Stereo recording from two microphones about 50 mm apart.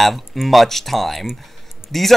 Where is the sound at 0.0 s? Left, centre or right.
Centre.